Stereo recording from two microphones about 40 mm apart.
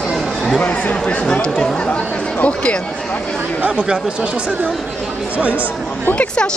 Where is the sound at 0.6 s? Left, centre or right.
Left.